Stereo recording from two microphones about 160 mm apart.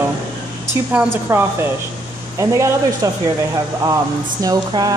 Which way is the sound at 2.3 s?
20° right (ahead or behind).